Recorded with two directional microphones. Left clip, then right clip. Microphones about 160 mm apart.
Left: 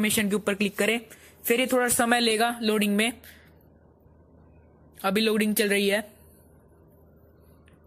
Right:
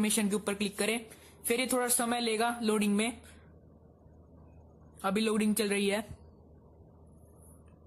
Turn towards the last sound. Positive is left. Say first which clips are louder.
# left 7 dB
turn(degrees=10)  # may be behind; listen again after turning